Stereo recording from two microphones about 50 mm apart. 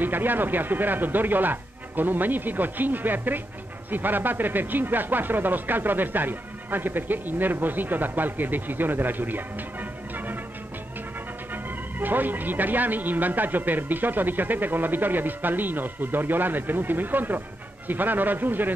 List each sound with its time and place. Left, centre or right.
0.0 s speech: right
11.5 s speech: right